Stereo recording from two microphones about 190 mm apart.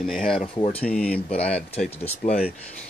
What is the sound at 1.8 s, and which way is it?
Speech, 35° left (ahead or behind).